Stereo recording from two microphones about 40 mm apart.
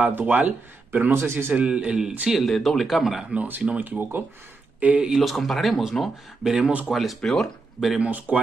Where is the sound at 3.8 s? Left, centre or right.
Right.